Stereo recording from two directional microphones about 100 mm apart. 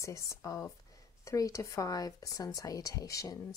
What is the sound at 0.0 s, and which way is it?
Speech, 30° left (ahead or behind).